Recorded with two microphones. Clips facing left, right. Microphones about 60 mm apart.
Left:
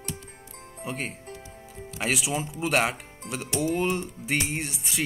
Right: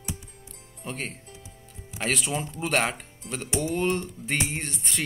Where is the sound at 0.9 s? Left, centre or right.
Centre.